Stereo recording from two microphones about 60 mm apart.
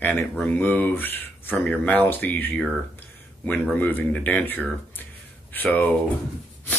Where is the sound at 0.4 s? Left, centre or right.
Left.